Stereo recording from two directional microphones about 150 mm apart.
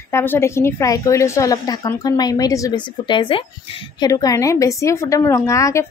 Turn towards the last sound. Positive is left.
turn(degrees=20)  # may be behind; listen again after turning